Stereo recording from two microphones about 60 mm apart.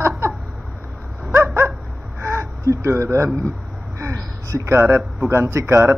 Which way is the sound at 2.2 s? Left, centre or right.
Right.